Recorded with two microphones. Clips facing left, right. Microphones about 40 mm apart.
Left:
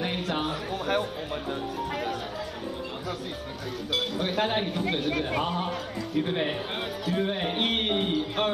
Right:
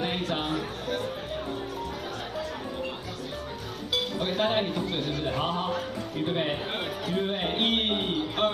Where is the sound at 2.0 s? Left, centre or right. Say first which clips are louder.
Left 3 dB; left.